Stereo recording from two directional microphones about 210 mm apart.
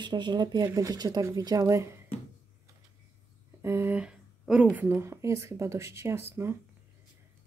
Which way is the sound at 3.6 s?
10° right (ahead or behind).